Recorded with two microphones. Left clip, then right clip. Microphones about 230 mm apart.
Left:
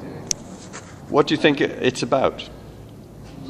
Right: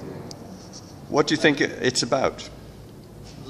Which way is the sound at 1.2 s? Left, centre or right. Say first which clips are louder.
Left 2 dB; centre.